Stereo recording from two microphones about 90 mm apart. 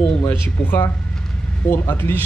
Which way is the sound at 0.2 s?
20° left (ahead or behind).